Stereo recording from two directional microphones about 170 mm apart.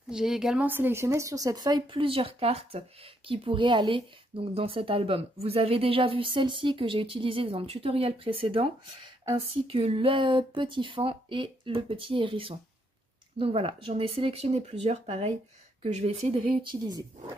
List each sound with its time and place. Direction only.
0.1 s speech: 5° right (ahead or behind); by 17.0 s 30° right (ahead or behind)